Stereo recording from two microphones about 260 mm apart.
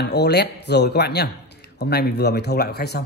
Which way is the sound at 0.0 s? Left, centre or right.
Left.